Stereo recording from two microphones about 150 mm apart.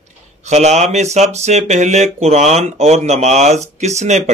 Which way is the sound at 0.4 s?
50° right (ahead or behind).